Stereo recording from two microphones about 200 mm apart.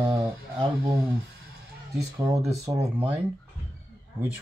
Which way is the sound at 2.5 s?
15° right (ahead or behind).